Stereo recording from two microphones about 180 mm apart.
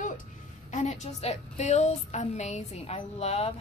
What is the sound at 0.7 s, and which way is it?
A woman's voice, 40° left (ahead or behind).